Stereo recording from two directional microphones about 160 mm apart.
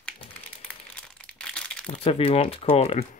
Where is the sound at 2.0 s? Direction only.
35° left (ahead or behind).